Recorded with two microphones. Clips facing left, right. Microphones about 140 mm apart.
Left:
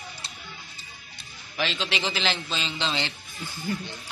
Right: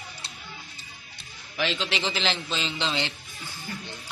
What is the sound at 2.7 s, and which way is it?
Speech, 15° right (ahead or behind).